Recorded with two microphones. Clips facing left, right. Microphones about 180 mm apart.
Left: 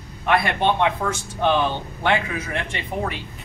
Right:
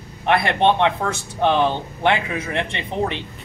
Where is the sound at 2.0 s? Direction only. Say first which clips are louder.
Right 2 dB; 25° right (ahead or behind).